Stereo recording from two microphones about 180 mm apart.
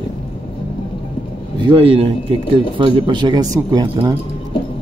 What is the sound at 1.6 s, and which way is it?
A man's voice, 30° right (ahead or behind).